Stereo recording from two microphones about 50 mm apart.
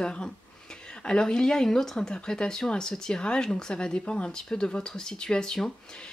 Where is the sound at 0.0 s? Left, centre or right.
Centre.